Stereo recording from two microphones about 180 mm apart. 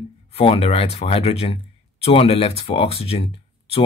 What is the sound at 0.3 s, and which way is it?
Speech, 30° left (ahead or behind).